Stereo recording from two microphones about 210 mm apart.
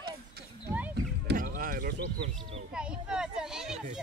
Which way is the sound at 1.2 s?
40° right (ahead or behind).